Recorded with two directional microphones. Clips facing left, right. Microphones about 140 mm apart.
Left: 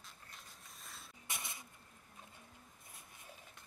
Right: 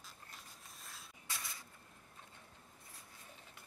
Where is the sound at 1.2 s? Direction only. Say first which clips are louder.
Left 1 dB; 20° left (ahead or behind).